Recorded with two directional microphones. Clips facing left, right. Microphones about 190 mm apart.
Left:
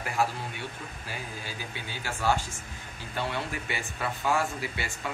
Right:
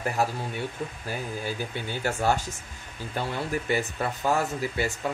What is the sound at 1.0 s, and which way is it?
Speech, 50° right (ahead or behind).